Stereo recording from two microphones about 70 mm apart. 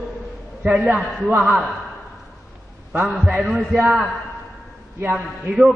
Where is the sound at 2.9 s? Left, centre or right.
Right.